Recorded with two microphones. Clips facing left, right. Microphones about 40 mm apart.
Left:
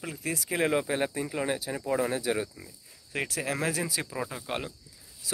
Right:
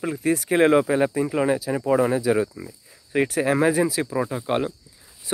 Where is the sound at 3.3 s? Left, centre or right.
Right.